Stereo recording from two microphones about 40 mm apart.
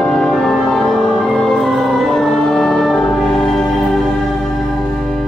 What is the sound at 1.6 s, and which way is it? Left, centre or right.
Music, centre.